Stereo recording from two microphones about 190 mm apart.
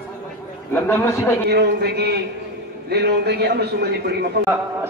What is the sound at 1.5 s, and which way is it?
A man's voice, 60° right (ahead or behind).